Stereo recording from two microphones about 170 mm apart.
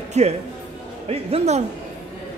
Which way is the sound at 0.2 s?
40° right (ahead or behind).